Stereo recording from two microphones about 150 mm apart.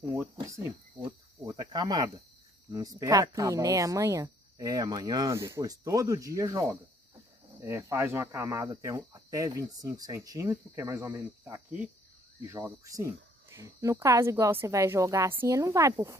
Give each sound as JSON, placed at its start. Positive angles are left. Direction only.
{"t": 0.1, "sound": "speech", "side_deg": -20}
{"t": 1.0, "sound": "cricket", "side_deg": -25}
{"t": 2.7, "sound": "speech", "side_deg": -25}